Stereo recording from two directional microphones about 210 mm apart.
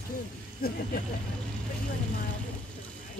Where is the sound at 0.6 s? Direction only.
45° left (ahead or behind).